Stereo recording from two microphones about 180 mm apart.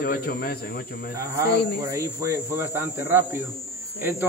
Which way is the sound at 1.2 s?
15° right (ahead or behind).